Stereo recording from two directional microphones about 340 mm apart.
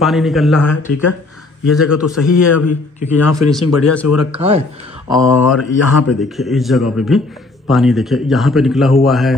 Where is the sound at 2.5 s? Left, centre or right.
Left.